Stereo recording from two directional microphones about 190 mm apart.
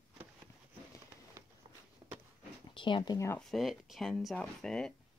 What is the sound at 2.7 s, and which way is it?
Speech, 25° left (ahead or behind).